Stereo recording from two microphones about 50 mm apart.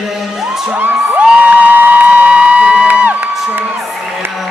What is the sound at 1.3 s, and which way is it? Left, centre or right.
Music, right.